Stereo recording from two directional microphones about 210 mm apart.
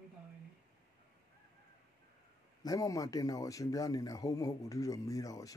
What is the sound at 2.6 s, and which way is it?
Speech, 15° left (ahead or behind).